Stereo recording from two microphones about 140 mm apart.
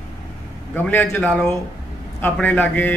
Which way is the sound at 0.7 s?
15° left (ahead or behind).